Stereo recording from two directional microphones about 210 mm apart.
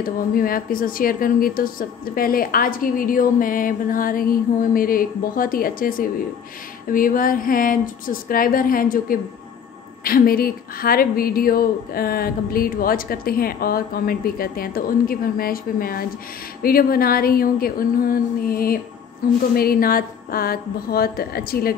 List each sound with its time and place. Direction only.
0.0 s speech: 45° left (ahead or behind)